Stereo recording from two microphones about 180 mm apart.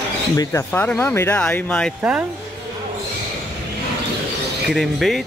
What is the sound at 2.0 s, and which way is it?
Speech, 5° right (ahead or behind).